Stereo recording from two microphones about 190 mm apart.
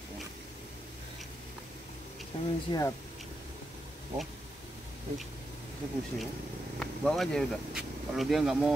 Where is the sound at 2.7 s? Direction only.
15° left (ahead or behind).